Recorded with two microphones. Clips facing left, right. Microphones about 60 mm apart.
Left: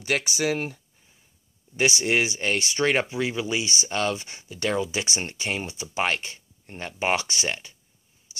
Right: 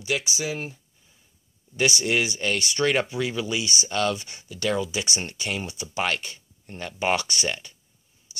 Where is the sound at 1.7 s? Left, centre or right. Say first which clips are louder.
Left 1 dB; left.